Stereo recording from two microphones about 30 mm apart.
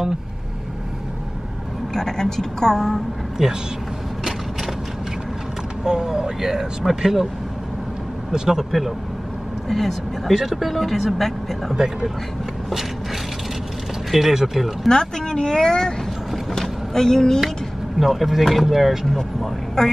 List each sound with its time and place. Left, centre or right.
2.0 s a woman's voice: centre
3.4 s speech: centre
5.9 s speech: right
8.3 s speech: centre
9.7 s speech: centre
10.3 s speech: centre
11.7 s speech: right
14.3 s speech: centre
14.9 s a woman's voice: left
17.9 s speech: centre
18.4 s speech: centre
19.8 s a woman's voice: centre